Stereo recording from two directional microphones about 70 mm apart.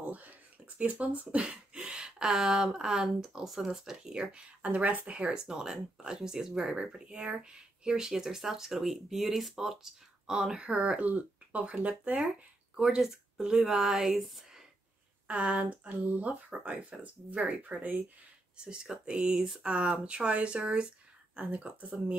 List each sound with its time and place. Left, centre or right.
0.0 s speech: right; by 14.6 s centre
15.2 s speech: centre